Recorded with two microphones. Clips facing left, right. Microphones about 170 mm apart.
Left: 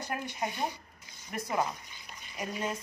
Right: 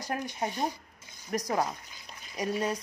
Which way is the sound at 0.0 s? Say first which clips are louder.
Right 2 dB; 35° right (ahead or behind).